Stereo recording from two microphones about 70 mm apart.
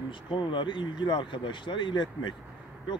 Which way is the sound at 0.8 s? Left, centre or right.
Left.